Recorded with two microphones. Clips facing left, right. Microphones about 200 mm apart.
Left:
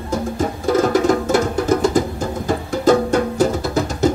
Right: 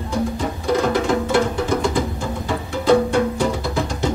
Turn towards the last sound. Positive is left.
turn(degrees=40)  # may be behind; listen again after turning